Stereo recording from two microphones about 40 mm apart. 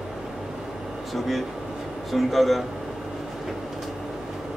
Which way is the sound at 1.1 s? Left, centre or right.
Centre.